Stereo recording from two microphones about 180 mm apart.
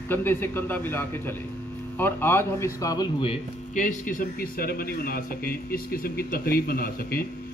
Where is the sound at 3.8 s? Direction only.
45° left (ahead or behind).